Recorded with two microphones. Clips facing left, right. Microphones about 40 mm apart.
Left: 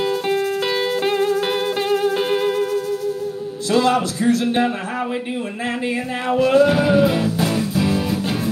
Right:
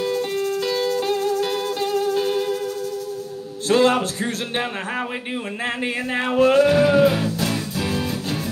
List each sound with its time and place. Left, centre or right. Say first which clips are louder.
0.4 s music: left 2 dB; left
3.6 s speech: even; right
6.2 s speech: left 1 dB; right
6.7 s music: even; centre
7.2 s music: left 4 dB; centre